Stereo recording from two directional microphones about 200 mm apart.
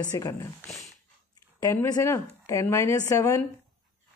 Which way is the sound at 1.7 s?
15° left (ahead or behind).